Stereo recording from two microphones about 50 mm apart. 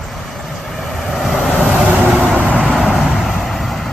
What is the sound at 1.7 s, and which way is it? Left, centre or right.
Vehicle, centre.